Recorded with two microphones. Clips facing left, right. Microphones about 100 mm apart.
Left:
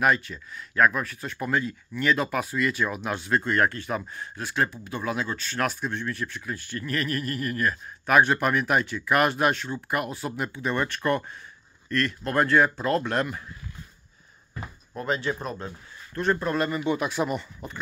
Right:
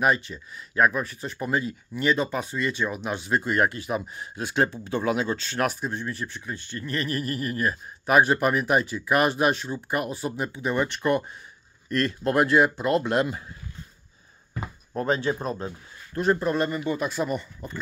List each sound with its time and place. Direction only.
0.0 s speech: 5° right (ahead or behind)
2.2 s speech: 5° left (ahead or behind); by 5.6 s 25° right (ahead or behind)
5.7 s speech: 5° right (ahead or behind)
6.5 s speech: 20° right (ahead or behind)
11.9 s speech: 30° right (ahead or behind)
12.4 s speech: 10° right (ahead or behind)
14.6 s a sound: 35° right (ahead or behind)
15.1 s speech: 20° right (ahead or behind); by 16.8 s 5° right (ahead or behind)
16.9 s speech: 10° left (ahead or behind)